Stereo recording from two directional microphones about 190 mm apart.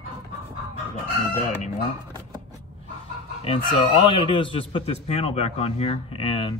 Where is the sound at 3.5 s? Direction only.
30° left (ahead or behind).